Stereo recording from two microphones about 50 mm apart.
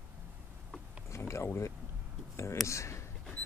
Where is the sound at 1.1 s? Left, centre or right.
Left.